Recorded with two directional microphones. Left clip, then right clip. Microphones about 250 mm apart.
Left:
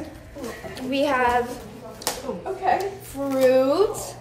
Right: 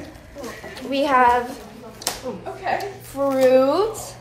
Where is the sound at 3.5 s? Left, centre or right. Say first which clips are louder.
Right 2 dB; right.